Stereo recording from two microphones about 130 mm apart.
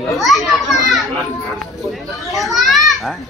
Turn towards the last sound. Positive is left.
turn(degrees=0)  # may be behind; listen again after turning